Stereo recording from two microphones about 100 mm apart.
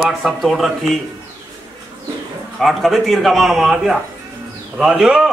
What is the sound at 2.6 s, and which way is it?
A man's voice, centre (ahead or behind).